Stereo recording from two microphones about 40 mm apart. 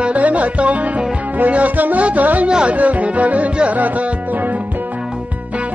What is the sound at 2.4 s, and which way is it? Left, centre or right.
Music, right.